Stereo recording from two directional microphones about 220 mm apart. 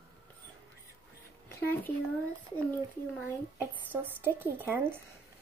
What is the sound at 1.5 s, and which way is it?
Speech, 10° left (ahead or behind).